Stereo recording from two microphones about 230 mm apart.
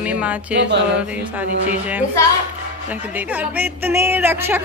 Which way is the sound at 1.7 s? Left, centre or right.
Centre.